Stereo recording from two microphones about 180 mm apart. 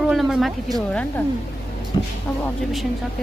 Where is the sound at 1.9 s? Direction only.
25° left (ahead or behind).